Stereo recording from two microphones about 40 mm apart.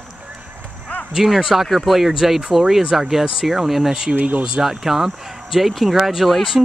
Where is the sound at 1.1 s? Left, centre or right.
Centre.